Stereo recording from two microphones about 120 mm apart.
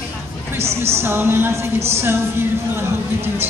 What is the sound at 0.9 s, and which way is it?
A woman's voice, 20° right (ahead or behind).